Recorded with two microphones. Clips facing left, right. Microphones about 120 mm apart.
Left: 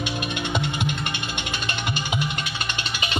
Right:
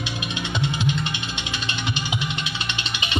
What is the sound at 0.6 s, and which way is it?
Music, 55° left (ahead or behind).